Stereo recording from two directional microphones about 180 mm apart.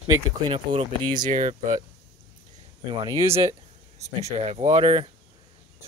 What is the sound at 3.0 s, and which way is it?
Speech, 15° right (ahead or behind).